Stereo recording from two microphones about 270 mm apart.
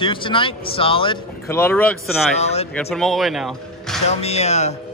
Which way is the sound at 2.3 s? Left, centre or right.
Left.